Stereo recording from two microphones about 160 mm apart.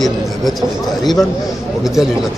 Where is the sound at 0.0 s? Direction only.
Centre (ahead or behind).